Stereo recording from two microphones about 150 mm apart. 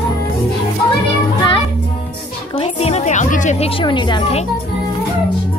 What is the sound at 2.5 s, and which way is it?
A woman's voice, 45° left (ahead or behind).